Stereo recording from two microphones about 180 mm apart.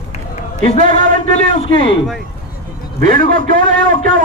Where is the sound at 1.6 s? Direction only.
30° left (ahead or behind).